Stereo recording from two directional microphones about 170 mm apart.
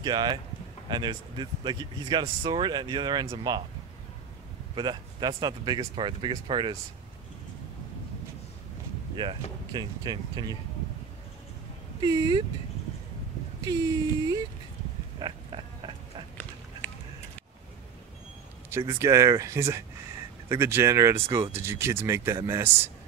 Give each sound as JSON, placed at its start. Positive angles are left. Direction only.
{"t": 0.0, "sound": "speech", "side_deg": -25}
{"t": 4.7, "sound": "speech", "side_deg": -25}
{"t": 9.1, "sound": "speech", "side_deg": -25}
{"t": 12.0, "sound": "speech", "side_deg": -25}
{"t": 13.7, "sound": "speech", "side_deg": -25}
{"t": 15.1, "sound": "pig", "side_deg": -30}
{"t": 18.7, "sound": "speech", "side_deg": -15}